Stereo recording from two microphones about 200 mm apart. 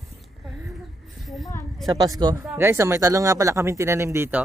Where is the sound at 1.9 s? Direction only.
20° right (ahead or behind).